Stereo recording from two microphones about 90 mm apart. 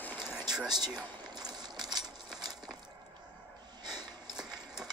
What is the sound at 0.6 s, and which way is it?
Speech, 50° right (ahead or behind).